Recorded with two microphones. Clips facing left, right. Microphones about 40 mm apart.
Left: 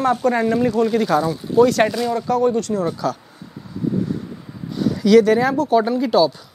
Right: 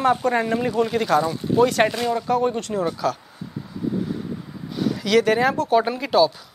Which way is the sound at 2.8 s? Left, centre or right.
Centre.